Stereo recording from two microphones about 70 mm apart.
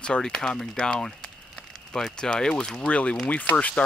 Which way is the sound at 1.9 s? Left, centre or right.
Centre.